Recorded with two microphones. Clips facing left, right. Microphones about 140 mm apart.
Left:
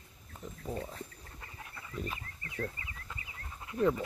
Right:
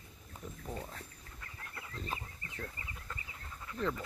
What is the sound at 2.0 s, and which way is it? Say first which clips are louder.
Speech: left 6 dB; 10° left (ahead or behind).